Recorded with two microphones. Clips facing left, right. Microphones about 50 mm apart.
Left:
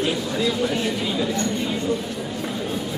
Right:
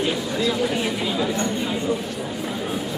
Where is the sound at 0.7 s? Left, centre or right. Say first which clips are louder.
Even; centre.